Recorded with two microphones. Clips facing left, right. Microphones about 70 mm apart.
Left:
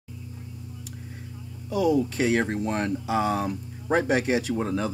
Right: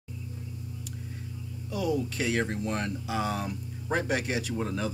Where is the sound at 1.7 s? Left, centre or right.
Centre.